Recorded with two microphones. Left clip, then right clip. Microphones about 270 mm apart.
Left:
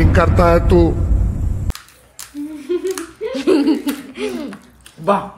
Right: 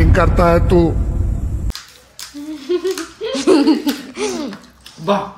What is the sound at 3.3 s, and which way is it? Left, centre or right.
Laughter, centre.